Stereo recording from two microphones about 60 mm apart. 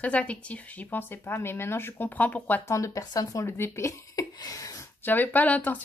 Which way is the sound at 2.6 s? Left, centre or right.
Left.